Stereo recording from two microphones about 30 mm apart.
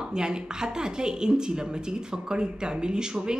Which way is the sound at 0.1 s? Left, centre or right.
Right.